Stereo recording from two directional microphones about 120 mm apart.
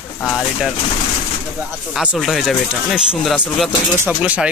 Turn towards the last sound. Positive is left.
turn(degrees=-10)  # may be behind; listen again after turning